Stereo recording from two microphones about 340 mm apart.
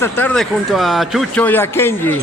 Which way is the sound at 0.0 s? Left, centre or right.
Centre.